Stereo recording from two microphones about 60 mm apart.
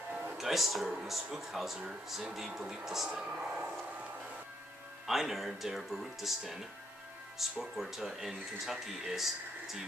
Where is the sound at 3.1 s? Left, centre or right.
Centre.